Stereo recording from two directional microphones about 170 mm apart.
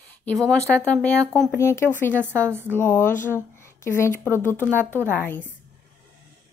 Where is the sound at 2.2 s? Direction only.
15° right (ahead or behind).